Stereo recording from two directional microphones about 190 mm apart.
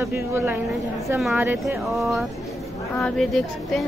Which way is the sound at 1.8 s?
Centre (ahead or behind).